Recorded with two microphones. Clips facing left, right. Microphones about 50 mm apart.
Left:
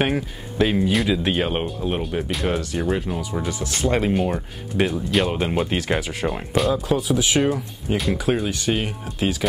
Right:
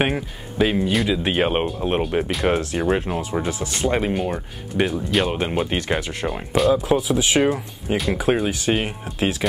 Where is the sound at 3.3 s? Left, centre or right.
Right.